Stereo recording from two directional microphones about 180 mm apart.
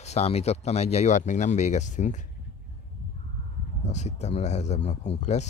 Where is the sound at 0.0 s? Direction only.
35° left (ahead or behind).